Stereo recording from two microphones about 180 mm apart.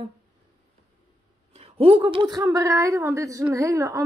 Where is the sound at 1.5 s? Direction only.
35° right (ahead or behind).